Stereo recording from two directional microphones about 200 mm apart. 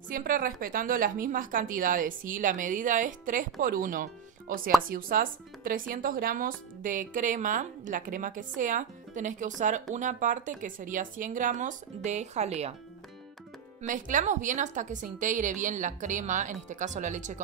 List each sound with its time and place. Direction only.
0.1 s a woman's voice: 45° right (ahead or behind)
13.8 s a woman's voice: 40° right (ahead or behind)